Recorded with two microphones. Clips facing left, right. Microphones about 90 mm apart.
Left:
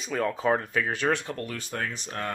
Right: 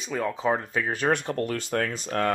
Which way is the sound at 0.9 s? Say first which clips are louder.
Right 5 dB; 40° right (ahead or behind).